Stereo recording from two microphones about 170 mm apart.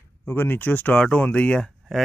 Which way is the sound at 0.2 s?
15° left (ahead or behind).